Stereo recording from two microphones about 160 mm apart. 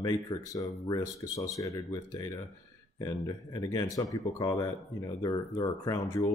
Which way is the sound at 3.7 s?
20° left (ahead or behind).